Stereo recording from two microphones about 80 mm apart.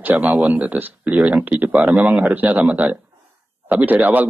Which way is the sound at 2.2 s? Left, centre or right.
Centre.